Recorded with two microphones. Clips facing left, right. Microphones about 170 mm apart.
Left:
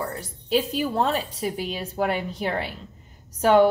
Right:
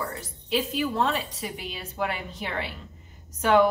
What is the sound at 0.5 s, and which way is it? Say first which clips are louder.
Speech: left 3 dB; 35° left (ahead or behind).